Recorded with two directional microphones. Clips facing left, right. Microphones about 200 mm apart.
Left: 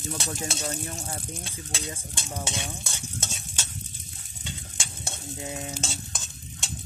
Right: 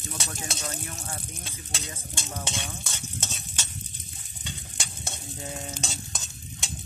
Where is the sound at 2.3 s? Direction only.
10° left (ahead or behind).